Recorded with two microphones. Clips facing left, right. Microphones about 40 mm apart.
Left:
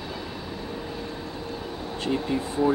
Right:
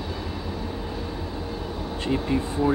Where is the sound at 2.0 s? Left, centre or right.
Centre.